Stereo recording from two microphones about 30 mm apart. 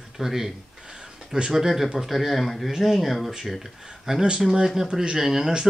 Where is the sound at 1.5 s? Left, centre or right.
Centre.